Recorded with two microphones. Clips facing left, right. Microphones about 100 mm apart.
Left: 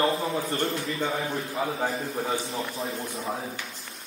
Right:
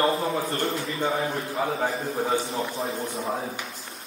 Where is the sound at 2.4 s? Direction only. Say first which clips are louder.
Right 3 dB; centre (ahead or behind).